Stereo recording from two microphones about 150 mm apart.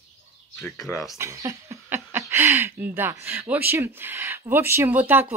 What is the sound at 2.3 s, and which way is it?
Speech, 15° right (ahead or behind).